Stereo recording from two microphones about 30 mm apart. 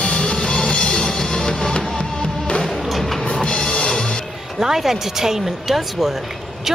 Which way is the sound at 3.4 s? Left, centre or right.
Left.